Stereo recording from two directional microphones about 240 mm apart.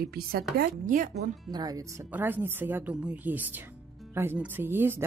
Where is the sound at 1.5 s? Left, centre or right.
Centre.